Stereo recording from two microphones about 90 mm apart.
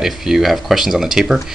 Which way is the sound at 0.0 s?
5° right (ahead or behind).